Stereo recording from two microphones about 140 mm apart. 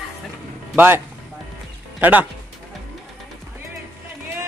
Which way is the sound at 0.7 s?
15° right (ahead or behind).